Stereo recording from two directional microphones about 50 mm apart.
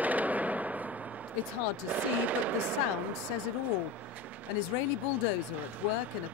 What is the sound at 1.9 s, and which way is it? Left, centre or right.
Speech, right.